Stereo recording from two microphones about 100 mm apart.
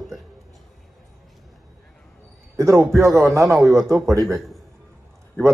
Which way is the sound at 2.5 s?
30° right (ahead or behind).